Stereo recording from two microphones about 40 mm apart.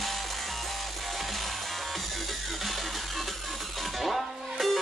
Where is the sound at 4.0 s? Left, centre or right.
Centre.